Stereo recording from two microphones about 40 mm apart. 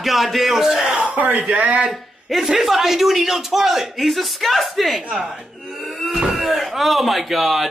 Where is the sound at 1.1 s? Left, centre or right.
Right.